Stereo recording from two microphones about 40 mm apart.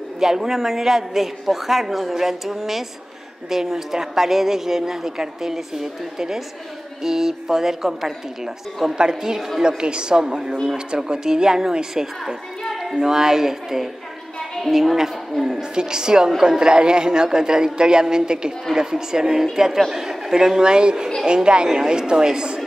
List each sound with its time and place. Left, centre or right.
0.2 s a woman's voice: centre
15.7 s a woman's voice: centre